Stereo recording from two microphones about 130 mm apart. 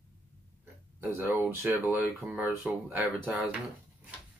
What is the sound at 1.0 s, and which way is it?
Speech, 15° right (ahead or behind).